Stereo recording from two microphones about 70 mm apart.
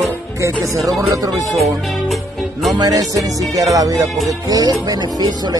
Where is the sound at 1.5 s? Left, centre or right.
Centre.